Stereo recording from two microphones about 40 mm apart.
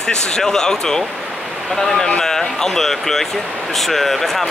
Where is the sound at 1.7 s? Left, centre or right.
Centre.